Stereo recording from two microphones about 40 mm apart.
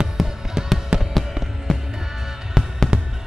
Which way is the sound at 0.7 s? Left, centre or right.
Centre.